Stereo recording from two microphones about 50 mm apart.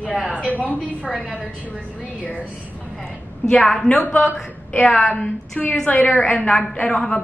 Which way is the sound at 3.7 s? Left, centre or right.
Centre.